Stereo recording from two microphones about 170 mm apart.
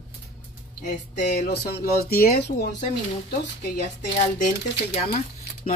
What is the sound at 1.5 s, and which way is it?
Speech, 60° left (ahead or behind).